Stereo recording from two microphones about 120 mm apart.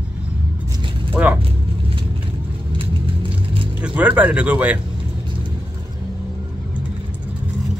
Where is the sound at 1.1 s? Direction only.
15° right (ahead or behind).